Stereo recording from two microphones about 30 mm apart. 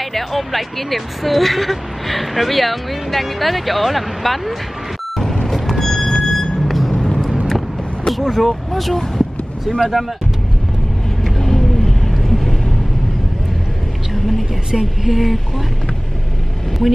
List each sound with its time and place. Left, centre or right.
0.0 s speech: centre
5.1 s vehicle: centre
5.9 s music: centre
6.2 s vehicle: left
7.0 s vehicle: centre
8.1 s speech: centre
11.2 s vehicle: centre
14.1 s vehicle: centre
14.7 s speech: centre
15.1 s speech: centre